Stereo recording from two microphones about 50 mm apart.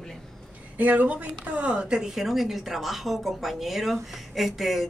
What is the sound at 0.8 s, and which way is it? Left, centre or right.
Speech, right.